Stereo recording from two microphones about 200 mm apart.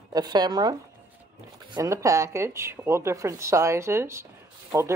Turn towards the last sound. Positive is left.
turn(degrees=-15)  # may be behind; listen again after turning